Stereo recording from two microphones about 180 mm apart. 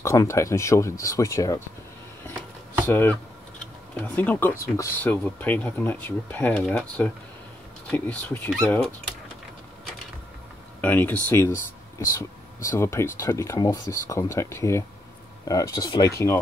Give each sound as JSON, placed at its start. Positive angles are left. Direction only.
{"t": 0.0, "sound": "speech", "side_deg": 15}
{"t": 2.9, "sound": "speech", "side_deg": 10}
{"t": 10.8, "sound": "speech", "side_deg": 10}